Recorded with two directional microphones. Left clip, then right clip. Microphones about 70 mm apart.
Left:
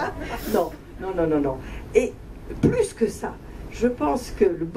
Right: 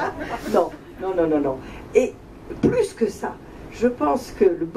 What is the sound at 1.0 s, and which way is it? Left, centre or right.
Speech, left.